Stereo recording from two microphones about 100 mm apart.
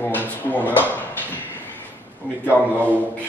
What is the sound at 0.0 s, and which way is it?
Drawer open or close, 20° left (ahead or behind).